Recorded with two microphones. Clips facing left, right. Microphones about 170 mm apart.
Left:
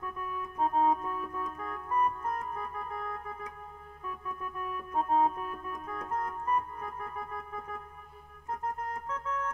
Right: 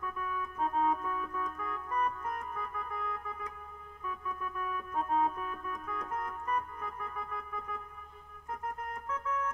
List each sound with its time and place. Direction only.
0.0 s keyboard: 40° left (ahead or behind)
2.2 s organ: 35° left (ahead or behind)
4.0 s keyboard: 40° left (ahead or behind)
9.0 s organ: 40° left (ahead or behind)